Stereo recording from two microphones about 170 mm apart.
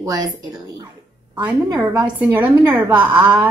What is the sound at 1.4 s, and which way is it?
Speech, 20° right (ahead or behind).